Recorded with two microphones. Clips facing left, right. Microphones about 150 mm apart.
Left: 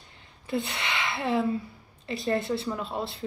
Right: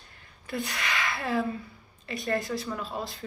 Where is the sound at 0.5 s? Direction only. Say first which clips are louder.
Left 2 dB; 25° left (ahead or behind).